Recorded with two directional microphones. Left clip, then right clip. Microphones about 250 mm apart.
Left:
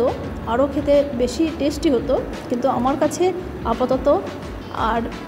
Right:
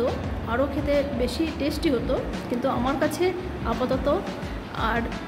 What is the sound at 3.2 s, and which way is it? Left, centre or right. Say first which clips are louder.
A woman's voice: left 5 dB; centre.